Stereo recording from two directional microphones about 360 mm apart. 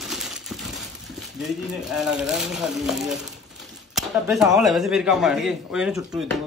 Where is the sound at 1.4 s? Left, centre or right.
Centre.